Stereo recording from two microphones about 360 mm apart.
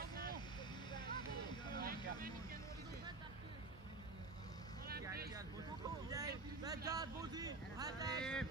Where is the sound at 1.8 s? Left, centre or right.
Right.